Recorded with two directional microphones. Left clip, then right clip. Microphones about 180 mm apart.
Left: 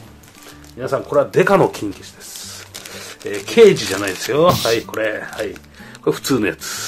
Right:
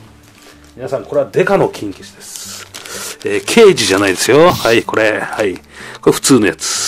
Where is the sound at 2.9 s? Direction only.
60° right (ahead or behind).